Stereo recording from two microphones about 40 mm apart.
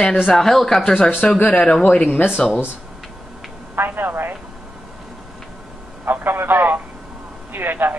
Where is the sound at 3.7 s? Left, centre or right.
Right.